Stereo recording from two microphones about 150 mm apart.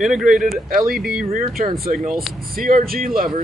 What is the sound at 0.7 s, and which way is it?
Speech, 75° right (ahead or behind).